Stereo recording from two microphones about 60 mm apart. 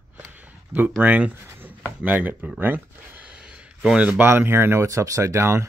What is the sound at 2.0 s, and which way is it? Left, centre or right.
Speech, right.